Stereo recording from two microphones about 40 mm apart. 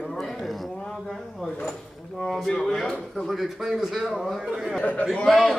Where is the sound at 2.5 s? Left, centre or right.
Centre.